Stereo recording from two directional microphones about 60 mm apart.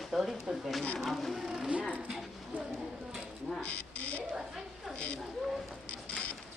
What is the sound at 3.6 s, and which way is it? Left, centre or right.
Speech, centre.